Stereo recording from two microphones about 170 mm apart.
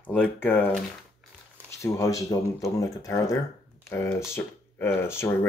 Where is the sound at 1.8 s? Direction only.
20° left (ahead or behind).